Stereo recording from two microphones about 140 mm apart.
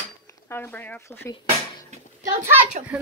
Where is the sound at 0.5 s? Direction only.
15° left (ahead or behind).